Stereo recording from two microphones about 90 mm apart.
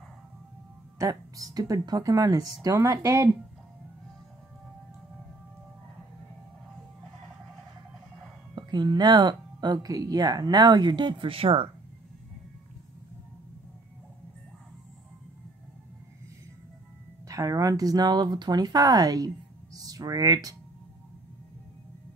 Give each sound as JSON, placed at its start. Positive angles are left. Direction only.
{"t": 0.9, "sound": "speech", "side_deg": -40}
{"t": 8.5, "sound": "speech", "side_deg": -55}
{"t": 17.3, "sound": "speech", "side_deg": -40}